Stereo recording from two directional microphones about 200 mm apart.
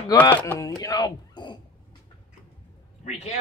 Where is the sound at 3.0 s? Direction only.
35° left (ahead or behind).